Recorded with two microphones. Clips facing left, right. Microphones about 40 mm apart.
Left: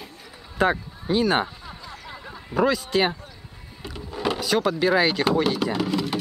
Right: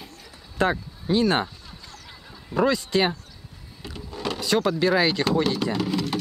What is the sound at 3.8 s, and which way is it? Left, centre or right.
Vehicle, centre.